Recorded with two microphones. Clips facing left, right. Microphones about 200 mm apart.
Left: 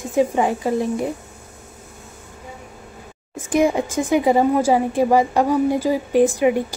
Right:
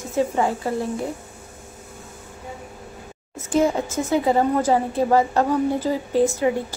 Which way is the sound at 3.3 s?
15° left (ahead or behind).